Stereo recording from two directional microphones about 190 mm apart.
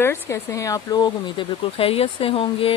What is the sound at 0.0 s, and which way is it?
Speech, 15° left (ahead or behind).